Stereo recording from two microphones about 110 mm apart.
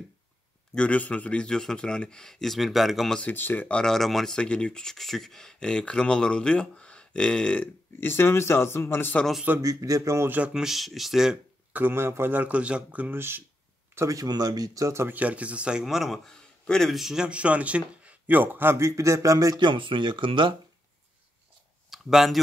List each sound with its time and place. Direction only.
0.7 s speech: 10° left (ahead or behind)
3.2 s speech: 15° left (ahead or behind)
9.6 s speech: 30° right (ahead or behind)
10.5 s speech: 5° right (ahead or behind)
11.7 s speech: 20° right (ahead or behind)
13.9 s speech: 30° right (ahead or behind)
15.1 s speech: 10° right (ahead or behind); by 19.7 s 35° right (ahead or behind)
19.7 s speech: 50° right (ahead or behind)
21.9 s speech: centre (ahead or behind)